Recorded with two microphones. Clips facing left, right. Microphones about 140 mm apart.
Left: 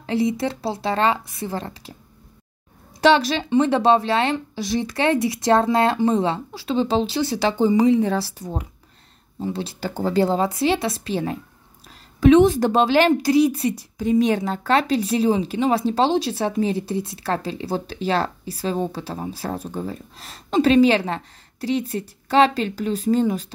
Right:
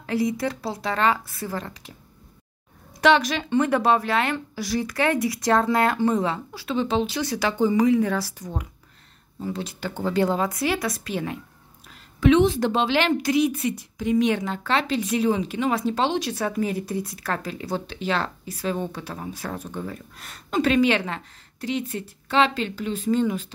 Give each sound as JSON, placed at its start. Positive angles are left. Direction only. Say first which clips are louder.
{"t": 0.0, "sound": "speech", "louder": "left 3 dB", "side_deg": 25}
{"t": 3.0, "sound": "a woman's voice", "louder": "left 2 dB", "side_deg": 30}